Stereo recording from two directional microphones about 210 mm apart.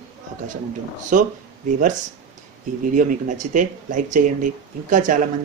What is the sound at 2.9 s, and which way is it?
Speech, 40° right (ahead or behind).